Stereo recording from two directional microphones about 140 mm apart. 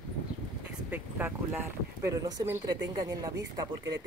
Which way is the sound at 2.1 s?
25° right (ahead or behind).